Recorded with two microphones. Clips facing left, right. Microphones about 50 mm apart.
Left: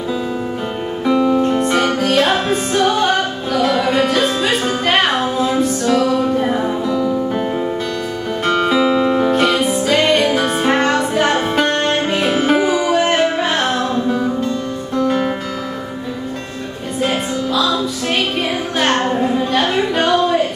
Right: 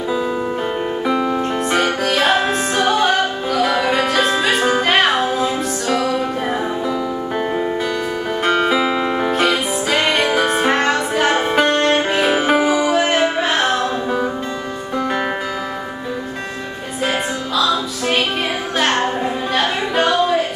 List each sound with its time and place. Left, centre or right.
1.0 s music: centre
17.6 s music: centre
18.8 s a sound: centre